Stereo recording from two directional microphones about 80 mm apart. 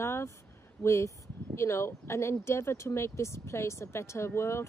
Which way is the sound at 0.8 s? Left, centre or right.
Left.